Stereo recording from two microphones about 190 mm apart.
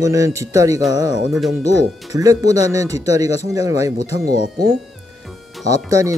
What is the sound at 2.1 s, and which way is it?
Speech, 20° right (ahead or behind).